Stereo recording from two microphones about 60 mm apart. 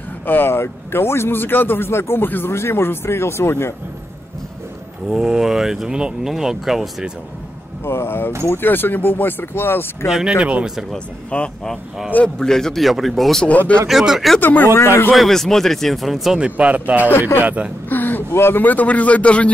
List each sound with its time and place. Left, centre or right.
0.3 s a man's voice: left
5.1 s speech: centre
7.8 s a man's voice: left
10.0 s speech: centre
10.4 s speech: centre
11.2 s speech: centre
12.4 s speech: centre
14.4 s a man's voice: left
15.1 s speech: centre
16.3 s speech: right
17.8 s a sound: left
18.3 s speech: left